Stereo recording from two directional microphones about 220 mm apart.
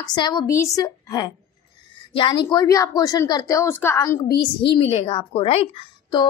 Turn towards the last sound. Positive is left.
turn(degrees=20)  # may be behind; listen again after turning